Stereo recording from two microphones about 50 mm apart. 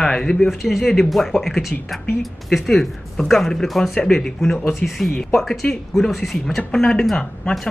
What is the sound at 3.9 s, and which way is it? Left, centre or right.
Speech, centre.